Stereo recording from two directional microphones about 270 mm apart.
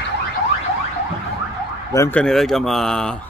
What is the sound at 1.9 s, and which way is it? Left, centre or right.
Speech, centre.